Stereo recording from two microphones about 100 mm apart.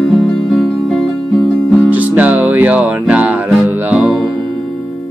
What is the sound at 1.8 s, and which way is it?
Music, 15° right (ahead or behind).